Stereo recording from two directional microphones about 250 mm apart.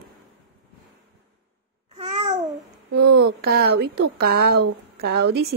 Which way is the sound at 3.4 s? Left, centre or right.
Right.